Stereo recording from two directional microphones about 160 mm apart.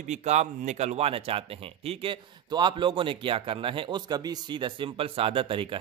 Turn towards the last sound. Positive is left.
turn(degrees=-35)  # may be behind; listen again after turning